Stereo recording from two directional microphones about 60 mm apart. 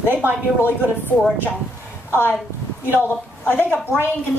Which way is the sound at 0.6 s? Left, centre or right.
Left.